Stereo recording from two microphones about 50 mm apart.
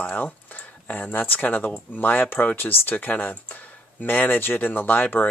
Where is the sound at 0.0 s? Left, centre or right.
Left.